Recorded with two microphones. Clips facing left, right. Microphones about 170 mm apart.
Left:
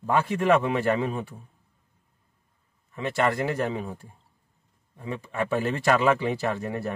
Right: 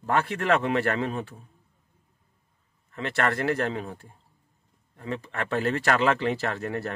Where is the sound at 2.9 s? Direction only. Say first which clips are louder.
Left 2 dB; 15° left (ahead or behind).